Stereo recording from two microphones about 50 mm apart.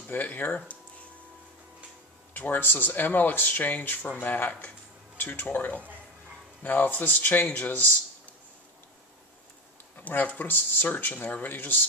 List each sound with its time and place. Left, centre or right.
0.1 s speech: left
2.3 s speech: left
4.5 s speech: left
5.1 s a sound: left
5.4 s speech: left
9.9 s speech: left